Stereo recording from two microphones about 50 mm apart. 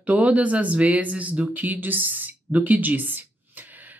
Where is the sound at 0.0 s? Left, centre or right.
Right.